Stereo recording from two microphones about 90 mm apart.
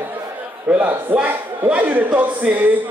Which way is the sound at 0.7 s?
20° right (ahead or behind).